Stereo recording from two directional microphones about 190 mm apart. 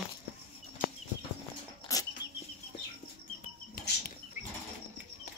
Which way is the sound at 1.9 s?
15° left (ahead or behind).